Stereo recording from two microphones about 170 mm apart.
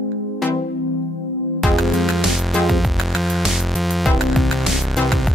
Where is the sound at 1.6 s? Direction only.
Centre (ahead or behind).